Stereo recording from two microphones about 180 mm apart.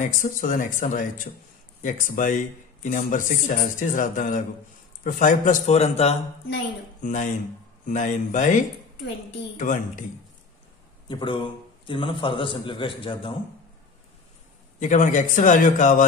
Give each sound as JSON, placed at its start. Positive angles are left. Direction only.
{"t": 0.0, "sound": "a man's voice", "side_deg": 45}
{"t": 11.1, "sound": "a man's voice", "side_deg": 25}
{"t": 14.8, "sound": "speech", "side_deg": 45}